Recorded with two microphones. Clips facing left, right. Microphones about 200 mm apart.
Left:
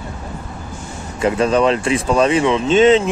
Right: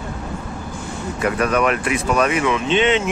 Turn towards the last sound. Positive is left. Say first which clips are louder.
# left 6 dB
turn(degrees=35)  # may be behind; listen again after turning